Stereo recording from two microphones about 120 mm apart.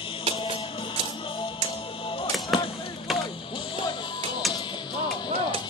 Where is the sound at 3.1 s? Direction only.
Centre (ahead or behind).